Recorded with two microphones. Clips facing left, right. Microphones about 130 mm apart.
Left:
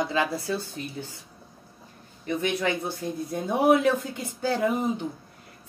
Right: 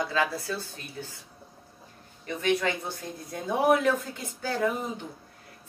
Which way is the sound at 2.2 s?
20° left (ahead or behind).